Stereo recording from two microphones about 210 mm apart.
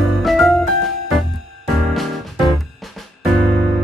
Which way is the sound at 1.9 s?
Centre (ahead or behind).